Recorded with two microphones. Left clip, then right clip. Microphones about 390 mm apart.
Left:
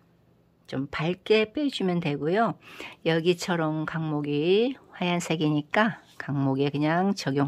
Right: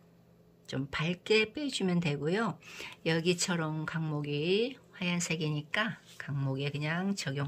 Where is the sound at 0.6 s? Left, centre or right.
Centre.